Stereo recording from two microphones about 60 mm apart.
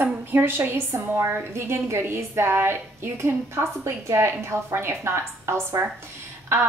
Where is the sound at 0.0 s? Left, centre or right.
Right.